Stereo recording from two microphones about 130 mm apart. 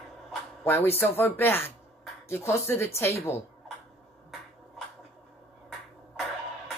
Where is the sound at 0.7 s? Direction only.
15° left (ahead or behind).